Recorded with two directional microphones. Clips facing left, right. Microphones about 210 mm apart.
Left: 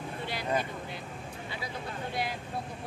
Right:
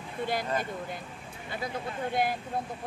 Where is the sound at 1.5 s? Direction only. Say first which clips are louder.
Right 6 dB; 50° right (ahead or behind).